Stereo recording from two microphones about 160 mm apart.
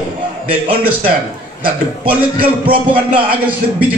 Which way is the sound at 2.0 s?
10° right (ahead or behind).